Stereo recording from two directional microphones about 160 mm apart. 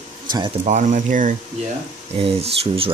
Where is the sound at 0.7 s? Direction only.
50° right (ahead or behind).